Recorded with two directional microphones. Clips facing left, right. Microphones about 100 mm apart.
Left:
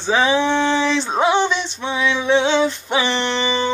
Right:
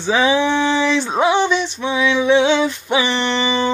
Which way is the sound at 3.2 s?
5° right (ahead or behind).